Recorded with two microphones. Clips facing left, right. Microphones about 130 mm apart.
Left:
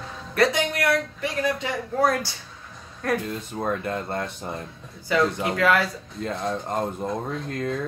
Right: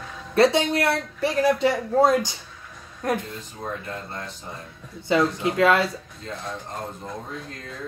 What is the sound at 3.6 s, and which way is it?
Speech, 60° left (ahead or behind).